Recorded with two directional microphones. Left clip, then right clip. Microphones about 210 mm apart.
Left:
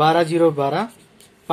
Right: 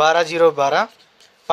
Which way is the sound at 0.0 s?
35° right (ahead or behind).